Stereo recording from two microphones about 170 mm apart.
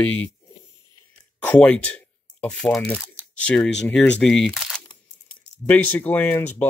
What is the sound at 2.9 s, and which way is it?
Speech, 10° right (ahead or behind).